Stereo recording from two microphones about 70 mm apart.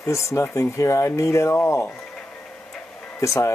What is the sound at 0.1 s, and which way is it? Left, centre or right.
Speech, left.